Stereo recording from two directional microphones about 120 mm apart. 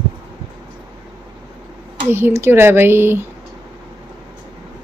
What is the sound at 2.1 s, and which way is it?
Speech, 20° right (ahead or behind).